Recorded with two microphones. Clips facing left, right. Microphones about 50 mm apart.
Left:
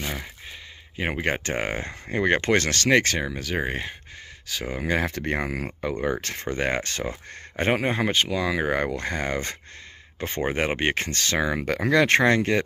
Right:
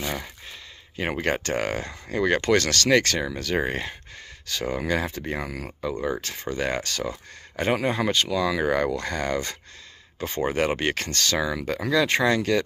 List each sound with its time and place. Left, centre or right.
0.0 s speech: centre
5.0 s speech: left
11.6 s speech: left